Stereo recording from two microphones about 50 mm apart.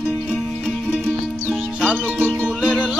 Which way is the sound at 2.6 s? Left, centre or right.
Right.